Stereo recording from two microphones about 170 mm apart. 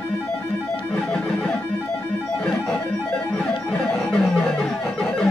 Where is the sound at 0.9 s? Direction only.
5° left (ahead or behind).